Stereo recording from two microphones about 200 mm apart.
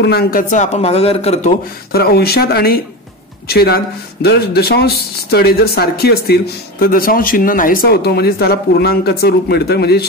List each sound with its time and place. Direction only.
0.0 s a man's voice: 55° left (ahead or behind); by 1.5 s 30° left (ahead or behind)
1.9 s speech: 50° left (ahead or behind)